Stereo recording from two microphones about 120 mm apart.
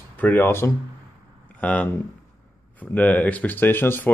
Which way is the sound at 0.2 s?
15° left (ahead or behind).